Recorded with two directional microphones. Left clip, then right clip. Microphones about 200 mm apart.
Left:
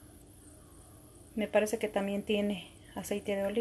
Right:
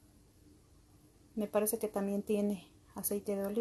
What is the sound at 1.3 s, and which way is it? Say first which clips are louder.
Speech: left 4 dB; 20° right (ahead or behind).